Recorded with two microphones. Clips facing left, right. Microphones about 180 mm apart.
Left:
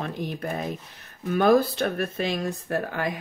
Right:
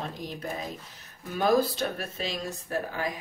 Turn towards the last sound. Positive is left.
turn(degrees=60)  # may be behind; listen again after turning